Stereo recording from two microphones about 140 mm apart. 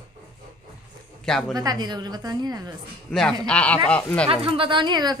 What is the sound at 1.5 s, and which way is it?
A woman's voice, 30° right (ahead or behind).